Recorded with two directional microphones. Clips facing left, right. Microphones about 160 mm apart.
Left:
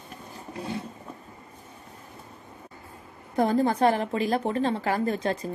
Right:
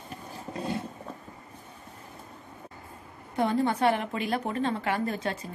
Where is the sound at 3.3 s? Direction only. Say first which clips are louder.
Left 3 dB; 40° left (ahead or behind).